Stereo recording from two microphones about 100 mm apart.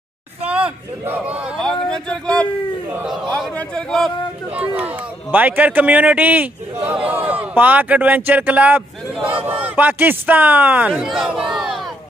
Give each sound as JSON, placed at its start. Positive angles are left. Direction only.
{"t": 0.5, "sound": "a man's voice", "side_deg": -15}
{"t": 1.9, "sound": "a man's voice", "side_deg": 10}
{"t": 4.6, "sound": "a man's voice", "side_deg": -15}